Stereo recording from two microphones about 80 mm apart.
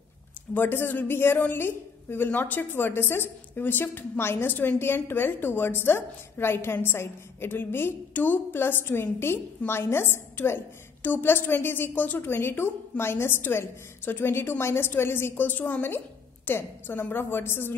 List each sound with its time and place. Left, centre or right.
0.6 s a woman's voice: left